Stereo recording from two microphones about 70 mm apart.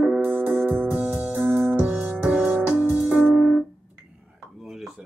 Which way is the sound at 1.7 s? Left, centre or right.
Centre.